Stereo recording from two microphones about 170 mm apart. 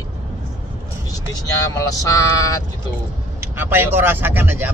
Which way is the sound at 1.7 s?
20° left (ahead or behind).